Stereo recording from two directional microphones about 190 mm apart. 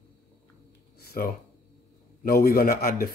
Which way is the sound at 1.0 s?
55° left (ahead or behind).